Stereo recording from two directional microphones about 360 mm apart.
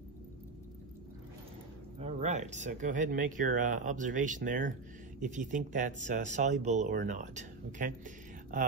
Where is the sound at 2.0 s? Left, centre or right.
Centre.